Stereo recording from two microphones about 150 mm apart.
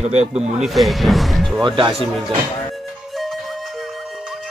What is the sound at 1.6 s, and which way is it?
Speech, 30° right (ahead or behind).